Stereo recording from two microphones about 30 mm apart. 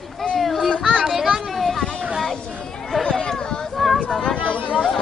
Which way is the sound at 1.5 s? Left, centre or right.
Centre.